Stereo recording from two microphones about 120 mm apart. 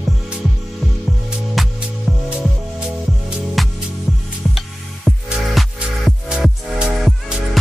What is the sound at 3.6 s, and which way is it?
Music, centre (ahead or behind).